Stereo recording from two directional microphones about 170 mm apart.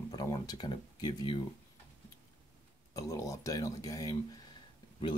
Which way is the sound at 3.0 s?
20° left (ahead or behind).